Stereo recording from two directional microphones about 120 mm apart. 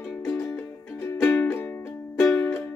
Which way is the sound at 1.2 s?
15° left (ahead or behind).